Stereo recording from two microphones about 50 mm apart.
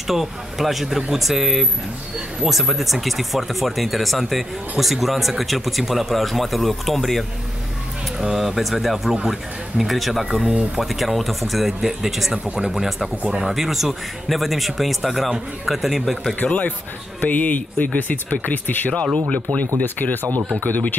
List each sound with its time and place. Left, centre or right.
0.0 s a man's voice: centre
9.8 s speech: centre
13.2 s speech: centre
13.5 s speech: centre
16.4 s speech: left
19.3 s speech: left
19.8 s speech: left